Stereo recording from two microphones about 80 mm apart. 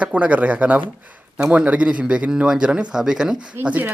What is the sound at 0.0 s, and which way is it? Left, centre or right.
Speech, centre.